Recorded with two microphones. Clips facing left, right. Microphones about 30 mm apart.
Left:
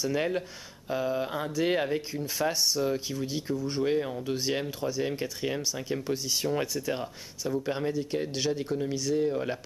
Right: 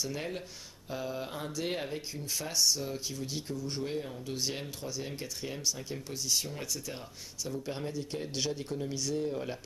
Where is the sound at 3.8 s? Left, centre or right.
Left.